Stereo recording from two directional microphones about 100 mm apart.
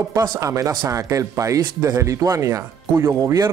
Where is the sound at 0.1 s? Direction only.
40° right (ahead or behind).